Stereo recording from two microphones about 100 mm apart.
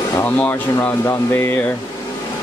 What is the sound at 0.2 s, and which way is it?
Speech, 20° left (ahead or behind).